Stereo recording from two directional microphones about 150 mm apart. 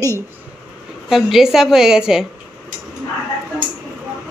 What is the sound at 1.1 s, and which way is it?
A woman's voice, centre (ahead or behind).